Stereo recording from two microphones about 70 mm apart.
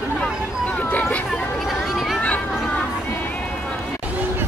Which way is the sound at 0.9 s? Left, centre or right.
Left.